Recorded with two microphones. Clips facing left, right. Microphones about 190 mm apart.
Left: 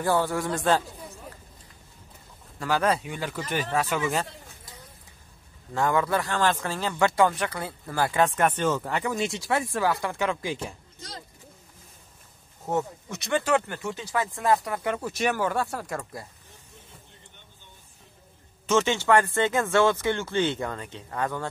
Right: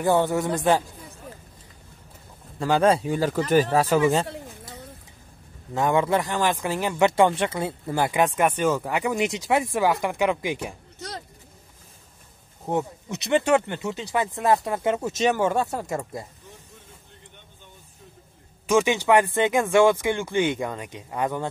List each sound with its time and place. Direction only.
0.0 s speech: 20° right (ahead or behind)
2.6 s speech: 25° right (ahead or behind)
5.8 s speech: 20° right (ahead or behind)
12.6 s speech: 15° right (ahead or behind)
18.7 s speech: 15° right (ahead or behind)